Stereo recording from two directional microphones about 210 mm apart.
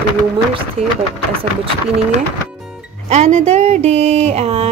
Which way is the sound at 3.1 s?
35° right (ahead or behind).